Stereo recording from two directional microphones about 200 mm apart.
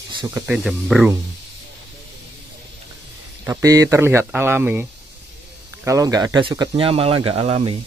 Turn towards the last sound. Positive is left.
turn(degrees=-25)  # may be behind; listen again after turning